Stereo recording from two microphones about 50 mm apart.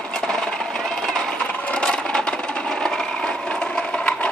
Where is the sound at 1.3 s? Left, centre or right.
Centre.